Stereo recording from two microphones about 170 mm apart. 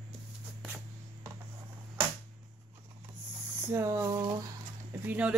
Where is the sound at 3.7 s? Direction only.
15° right (ahead or behind).